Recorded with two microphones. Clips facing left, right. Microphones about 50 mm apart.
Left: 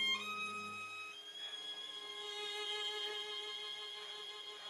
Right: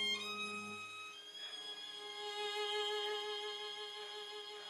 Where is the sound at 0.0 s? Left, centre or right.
Left.